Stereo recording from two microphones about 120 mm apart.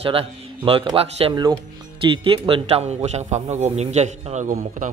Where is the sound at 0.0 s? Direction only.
50° right (ahead or behind).